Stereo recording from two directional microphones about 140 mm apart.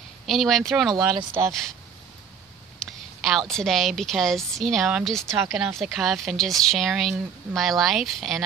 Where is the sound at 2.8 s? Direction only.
Centre (ahead or behind).